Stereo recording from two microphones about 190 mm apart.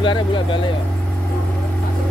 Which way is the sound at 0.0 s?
25° left (ahead or behind).